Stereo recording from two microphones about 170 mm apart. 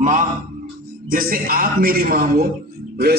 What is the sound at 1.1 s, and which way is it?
A man's voice, 55° right (ahead or behind).